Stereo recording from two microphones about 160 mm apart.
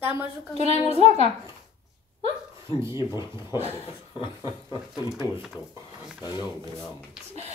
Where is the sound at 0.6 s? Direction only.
40° right (ahead or behind).